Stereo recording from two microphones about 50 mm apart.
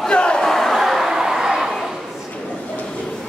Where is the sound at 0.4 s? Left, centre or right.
Centre.